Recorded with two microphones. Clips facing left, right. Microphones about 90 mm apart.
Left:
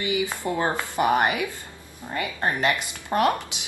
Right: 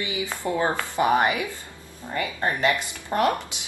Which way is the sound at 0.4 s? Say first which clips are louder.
Right 5 dB; 25° right (ahead or behind).